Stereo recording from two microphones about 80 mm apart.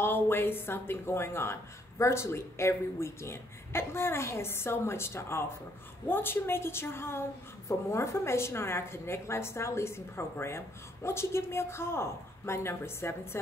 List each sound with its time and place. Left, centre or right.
0.0 s a woman's voice: left